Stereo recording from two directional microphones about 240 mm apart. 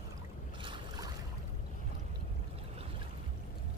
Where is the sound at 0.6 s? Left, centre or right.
Centre.